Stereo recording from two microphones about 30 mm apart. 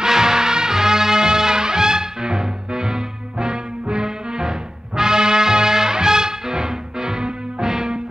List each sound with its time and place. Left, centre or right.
0.0 s music: right